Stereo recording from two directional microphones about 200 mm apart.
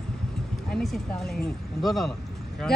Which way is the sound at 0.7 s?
Centre (ahead or behind).